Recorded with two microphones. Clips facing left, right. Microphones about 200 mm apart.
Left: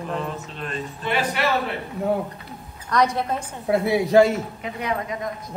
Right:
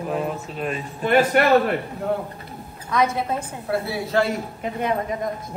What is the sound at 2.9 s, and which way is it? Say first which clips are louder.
Speech: even; centre (ahead or behind).